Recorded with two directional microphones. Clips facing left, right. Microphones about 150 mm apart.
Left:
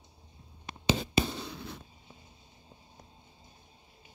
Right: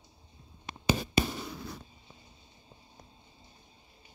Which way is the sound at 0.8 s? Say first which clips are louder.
Even; 25° left (ahead or behind).